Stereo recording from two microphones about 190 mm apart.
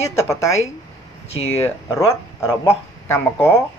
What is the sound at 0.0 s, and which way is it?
Speech, 15° left (ahead or behind).